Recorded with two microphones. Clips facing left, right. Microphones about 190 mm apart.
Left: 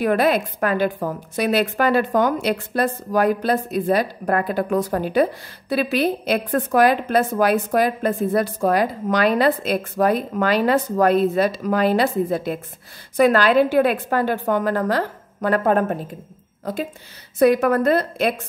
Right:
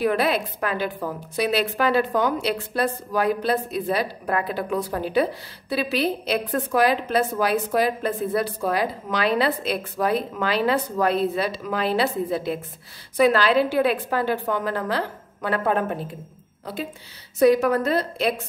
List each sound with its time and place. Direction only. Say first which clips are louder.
0.0 s a woman's voice: left 3 dB; 50° left (ahead or behind)
17.4 s a woman's voice: left 2 dB; 55° left (ahead or behind)